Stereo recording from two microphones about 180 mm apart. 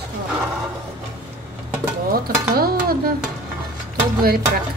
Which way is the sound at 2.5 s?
55° right (ahead or behind).